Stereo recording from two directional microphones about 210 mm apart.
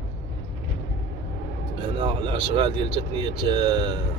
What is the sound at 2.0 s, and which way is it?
Speech, 25° right (ahead or behind).